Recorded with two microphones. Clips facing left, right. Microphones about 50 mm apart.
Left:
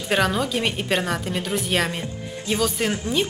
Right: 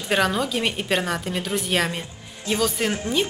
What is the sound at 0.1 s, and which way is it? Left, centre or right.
A woman's voice, centre.